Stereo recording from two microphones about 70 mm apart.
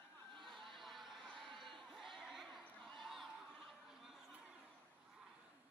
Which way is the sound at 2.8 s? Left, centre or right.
Centre.